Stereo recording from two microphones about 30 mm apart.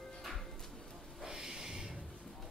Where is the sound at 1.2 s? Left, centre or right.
Centre.